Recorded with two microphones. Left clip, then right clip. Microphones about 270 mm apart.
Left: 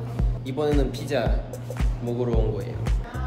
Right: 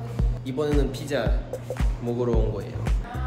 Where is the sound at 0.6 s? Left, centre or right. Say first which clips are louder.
Left 1 dB; centre.